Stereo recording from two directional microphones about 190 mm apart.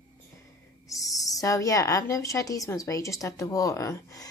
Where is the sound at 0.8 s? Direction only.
15° left (ahead or behind).